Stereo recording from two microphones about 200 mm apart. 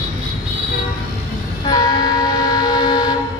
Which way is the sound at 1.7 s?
20° left (ahead or behind).